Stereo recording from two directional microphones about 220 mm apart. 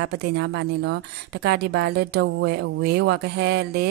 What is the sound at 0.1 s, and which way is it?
Speech, 45° right (ahead or behind).